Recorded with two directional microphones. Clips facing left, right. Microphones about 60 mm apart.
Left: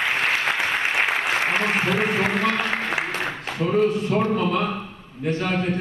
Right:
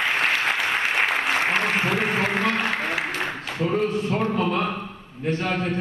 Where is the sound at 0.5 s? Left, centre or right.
Left.